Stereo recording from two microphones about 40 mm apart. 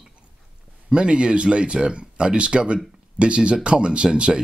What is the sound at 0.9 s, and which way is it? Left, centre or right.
Speech, right.